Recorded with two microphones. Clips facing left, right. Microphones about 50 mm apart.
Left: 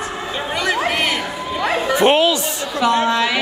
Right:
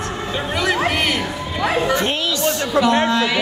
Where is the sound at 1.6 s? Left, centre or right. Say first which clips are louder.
Right 1 dB; centre.